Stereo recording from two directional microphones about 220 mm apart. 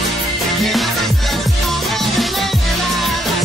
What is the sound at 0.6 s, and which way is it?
Music, centre (ahead or behind).